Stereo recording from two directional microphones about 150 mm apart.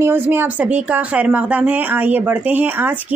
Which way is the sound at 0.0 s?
15° right (ahead or behind).